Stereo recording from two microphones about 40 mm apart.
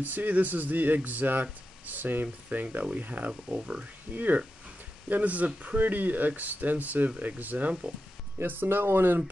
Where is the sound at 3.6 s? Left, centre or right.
Right.